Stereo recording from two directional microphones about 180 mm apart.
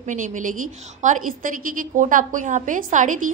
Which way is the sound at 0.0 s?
45° right (ahead or behind).